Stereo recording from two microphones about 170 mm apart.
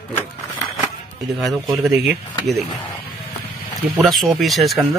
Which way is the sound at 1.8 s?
5° right (ahead or behind).